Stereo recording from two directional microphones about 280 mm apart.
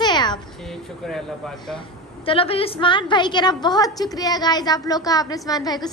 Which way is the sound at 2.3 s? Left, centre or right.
Centre.